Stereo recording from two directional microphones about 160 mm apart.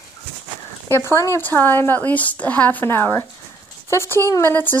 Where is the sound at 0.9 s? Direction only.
15° left (ahead or behind).